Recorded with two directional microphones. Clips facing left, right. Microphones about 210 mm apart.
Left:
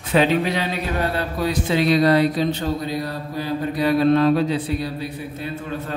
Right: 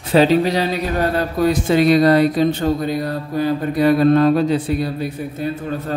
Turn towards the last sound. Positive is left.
turn(degrees=-45)  # may be behind; listen again after turning